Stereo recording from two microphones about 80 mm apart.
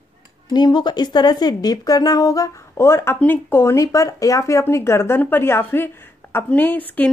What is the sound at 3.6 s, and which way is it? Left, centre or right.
A woman's voice, left.